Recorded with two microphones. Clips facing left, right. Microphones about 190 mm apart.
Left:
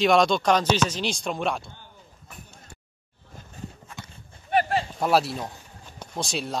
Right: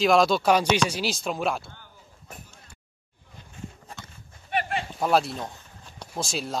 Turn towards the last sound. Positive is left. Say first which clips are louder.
# left 1 dB
turn(degrees=0)  # may be behind; listen again after turning